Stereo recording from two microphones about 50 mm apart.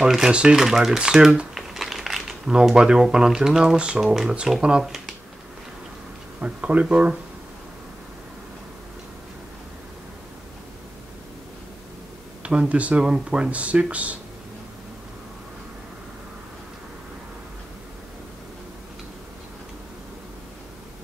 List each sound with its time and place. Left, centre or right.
0.3 s speech: centre
1.5 s crumpling: centre
2.5 s speech: centre
4.0 s speech: centre
4.4 s speech: centre
4.8 s a sound: centre
6.4 s speech: right
12.4 s speech: right